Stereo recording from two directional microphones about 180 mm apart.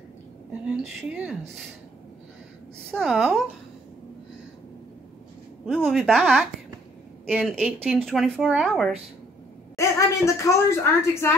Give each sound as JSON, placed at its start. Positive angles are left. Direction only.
{"t": 0.5, "sound": "speech", "side_deg": -5}
{"t": 2.9, "sound": "speech", "side_deg": 0}
{"t": 5.9, "sound": "speech", "side_deg": 0}
{"t": 9.8, "sound": "a woman's voice", "side_deg": 15}